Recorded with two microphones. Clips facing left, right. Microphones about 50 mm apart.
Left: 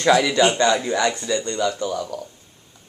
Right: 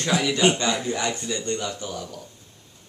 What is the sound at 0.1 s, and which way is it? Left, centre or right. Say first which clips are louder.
Speech: left 4 dB; left.